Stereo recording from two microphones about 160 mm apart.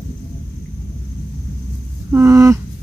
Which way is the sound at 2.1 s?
15° right (ahead or behind).